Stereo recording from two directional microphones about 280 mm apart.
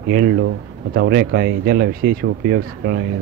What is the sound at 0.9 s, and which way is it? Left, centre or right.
Speech, right.